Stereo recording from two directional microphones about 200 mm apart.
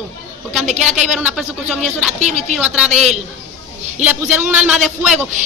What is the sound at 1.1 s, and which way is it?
Speech, 5° right (ahead or behind).